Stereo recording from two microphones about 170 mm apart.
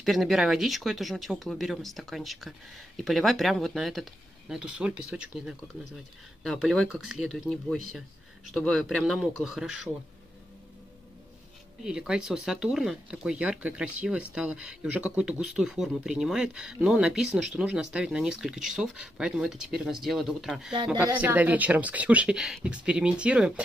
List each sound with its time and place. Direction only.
0.0 s speech: centre (ahead or behind)
11.8 s speech: 5° right (ahead or behind)
20.7 s speech: 25° right (ahead or behind)
21.2 s speech: 10° right (ahead or behind)